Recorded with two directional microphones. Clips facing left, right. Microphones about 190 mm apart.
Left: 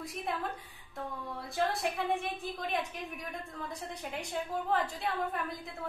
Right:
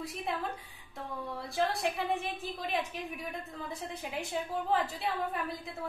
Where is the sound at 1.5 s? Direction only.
Centre (ahead or behind).